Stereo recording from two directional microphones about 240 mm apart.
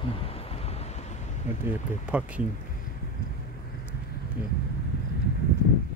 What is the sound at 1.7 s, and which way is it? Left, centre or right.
Speech, centre.